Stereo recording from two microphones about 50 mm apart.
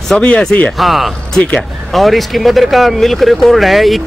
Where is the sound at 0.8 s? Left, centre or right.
Centre.